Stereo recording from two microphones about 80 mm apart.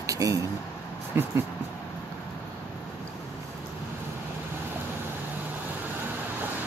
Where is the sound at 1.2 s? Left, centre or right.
Right.